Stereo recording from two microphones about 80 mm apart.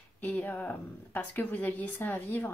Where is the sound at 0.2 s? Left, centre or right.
Left.